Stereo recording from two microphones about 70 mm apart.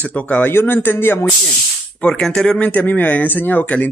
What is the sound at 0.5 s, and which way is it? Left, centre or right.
Speech, left.